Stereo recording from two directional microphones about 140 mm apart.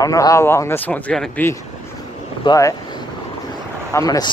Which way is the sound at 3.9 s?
25° left (ahead or behind).